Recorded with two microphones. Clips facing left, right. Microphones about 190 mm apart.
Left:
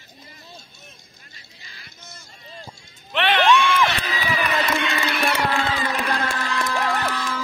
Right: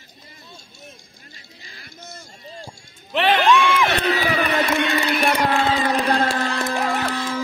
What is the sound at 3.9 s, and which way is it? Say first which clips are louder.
Crowd: right 7 dB; 65° right (ahead or behind).